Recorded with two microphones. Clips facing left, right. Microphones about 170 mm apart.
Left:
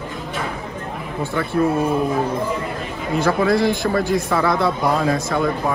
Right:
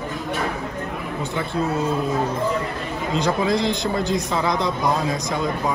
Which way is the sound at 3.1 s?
20° right (ahead or behind).